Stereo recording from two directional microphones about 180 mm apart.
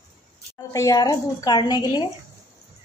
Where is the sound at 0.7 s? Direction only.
20° left (ahead or behind).